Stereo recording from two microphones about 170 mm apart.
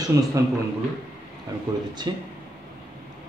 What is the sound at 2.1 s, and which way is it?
Speech, 25° right (ahead or behind).